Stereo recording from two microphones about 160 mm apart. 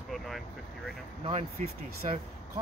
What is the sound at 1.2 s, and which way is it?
Speech, 40° right (ahead or behind).